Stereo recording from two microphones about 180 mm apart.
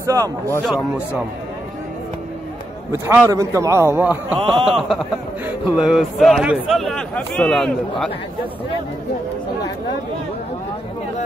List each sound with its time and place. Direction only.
0.0 s speech: 20° right (ahead or behind)
0.7 s speech: centre (ahead or behind)
2.9 s a man's voice: 15° right (ahead or behind)
4.4 s a man's voice: 25° right (ahead or behind)
4.6 s speech: centre (ahead or behind)